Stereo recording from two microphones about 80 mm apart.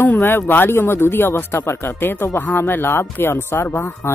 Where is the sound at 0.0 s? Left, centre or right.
Left.